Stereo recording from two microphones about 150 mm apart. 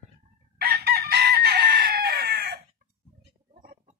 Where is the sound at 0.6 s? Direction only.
90° right.